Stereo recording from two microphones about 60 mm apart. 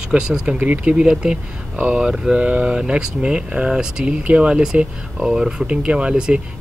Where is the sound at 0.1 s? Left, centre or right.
Centre.